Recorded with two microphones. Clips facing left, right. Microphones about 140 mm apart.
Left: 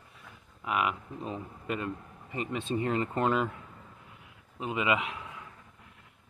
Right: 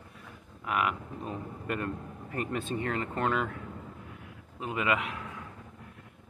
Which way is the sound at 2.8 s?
30° left (ahead or behind).